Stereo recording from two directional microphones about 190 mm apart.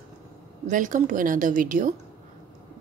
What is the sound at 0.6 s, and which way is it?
A woman's voice, 40° right (ahead or behind).